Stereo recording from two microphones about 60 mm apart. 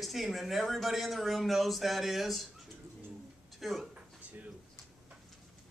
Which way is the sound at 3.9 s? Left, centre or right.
Right.